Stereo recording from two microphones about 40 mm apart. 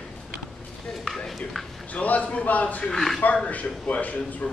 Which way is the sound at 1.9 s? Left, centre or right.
Left.